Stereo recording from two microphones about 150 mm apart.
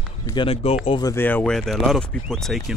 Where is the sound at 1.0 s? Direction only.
15° left (ahead or behind).